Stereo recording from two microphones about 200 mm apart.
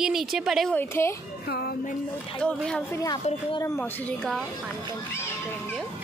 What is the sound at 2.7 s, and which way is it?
A woman's voice, 10° left (ahead or behind).